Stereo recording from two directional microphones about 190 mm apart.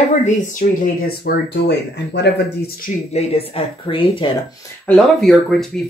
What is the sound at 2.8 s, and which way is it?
Speech, 35° left (ahead or behind).